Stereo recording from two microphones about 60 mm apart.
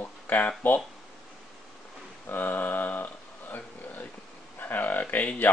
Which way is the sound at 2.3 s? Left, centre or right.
Left.